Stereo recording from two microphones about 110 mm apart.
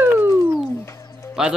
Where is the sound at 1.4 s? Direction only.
5° right (ahead or behind).